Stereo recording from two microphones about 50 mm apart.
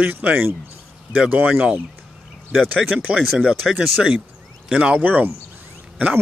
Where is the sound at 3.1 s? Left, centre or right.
Right.